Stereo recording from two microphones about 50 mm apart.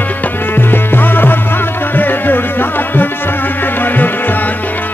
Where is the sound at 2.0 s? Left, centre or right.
Left.